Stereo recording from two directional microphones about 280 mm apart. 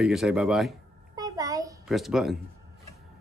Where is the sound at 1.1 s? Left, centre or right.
Centre.